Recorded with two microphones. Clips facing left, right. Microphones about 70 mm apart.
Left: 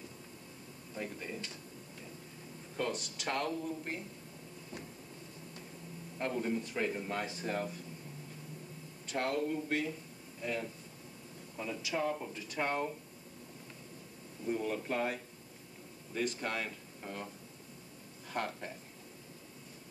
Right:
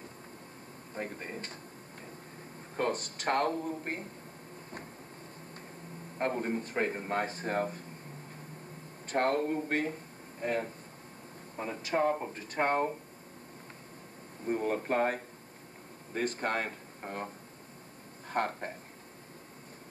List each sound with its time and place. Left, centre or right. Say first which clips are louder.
0.9 s speech: right 2 dB; right
2.7 s a man's voice: right 5 dB; right
6.1 s speech: right 3 dB; right
9.0 s a man's voice: right 5 dB; right
14.4 s a man's voice: right 4 dB; right
18.3 s speech: right 6 dB; right